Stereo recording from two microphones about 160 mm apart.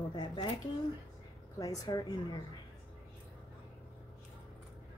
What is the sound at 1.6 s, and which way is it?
Speech, 20° left (ahead or behind).